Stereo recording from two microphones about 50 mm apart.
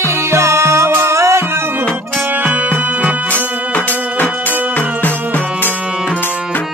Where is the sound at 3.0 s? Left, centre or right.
Right.